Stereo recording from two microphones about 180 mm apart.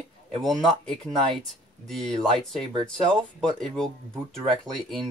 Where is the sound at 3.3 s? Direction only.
5° left (ahead or behind).